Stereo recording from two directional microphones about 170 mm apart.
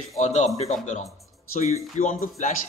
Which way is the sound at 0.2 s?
45° left (ahead or behind).